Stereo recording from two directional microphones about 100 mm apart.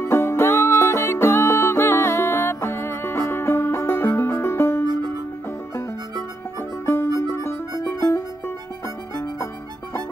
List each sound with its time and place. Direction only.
0.0 s music: 25° left (ahead or behind)
7.2 s music: 30° left (ahead or behind)